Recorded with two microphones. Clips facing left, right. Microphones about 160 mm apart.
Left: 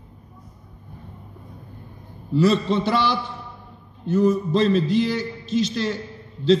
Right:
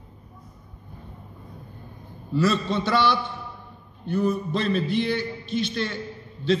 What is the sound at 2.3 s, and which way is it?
Speech, 25° left (ahead or behind).